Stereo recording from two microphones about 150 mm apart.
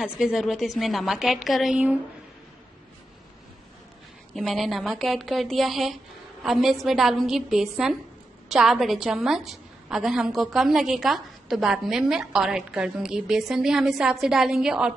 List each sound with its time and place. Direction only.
0.0 s a woman's voice: 5° right (ahead or behind)
4.4 s a woman's voice: centre (ahead or behind)